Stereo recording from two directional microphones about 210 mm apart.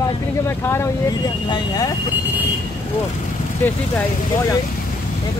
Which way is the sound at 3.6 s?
10° left (ahead or behind).